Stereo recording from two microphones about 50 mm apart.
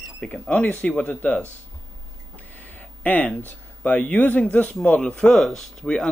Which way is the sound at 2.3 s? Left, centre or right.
Left.